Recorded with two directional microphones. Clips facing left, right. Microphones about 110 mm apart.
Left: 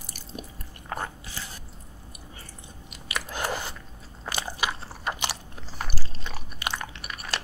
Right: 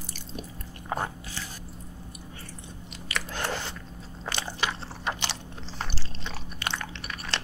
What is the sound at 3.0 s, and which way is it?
Chewing, 10° left (ahead or behind).